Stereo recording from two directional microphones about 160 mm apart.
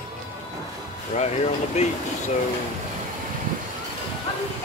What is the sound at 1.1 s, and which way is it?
Speech, 45° left (ahead or behind).